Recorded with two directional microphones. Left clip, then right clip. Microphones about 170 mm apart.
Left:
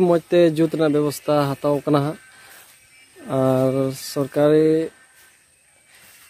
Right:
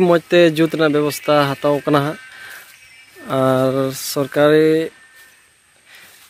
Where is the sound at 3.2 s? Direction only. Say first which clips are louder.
Right 3 dB; 10° left (ahead or behind).